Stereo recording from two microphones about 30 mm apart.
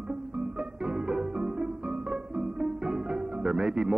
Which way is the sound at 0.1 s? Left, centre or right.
Right.